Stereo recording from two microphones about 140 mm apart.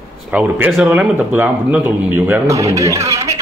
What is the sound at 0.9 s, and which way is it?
Speech, 10° right (ahead or behind).